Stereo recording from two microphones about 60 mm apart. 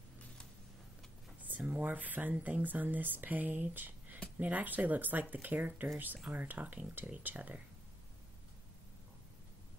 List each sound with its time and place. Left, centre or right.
1.4 s speech: right